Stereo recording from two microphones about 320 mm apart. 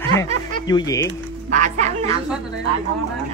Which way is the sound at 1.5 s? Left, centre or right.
Right.